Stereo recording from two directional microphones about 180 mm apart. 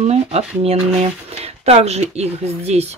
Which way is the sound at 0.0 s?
35° right (ahead or behind).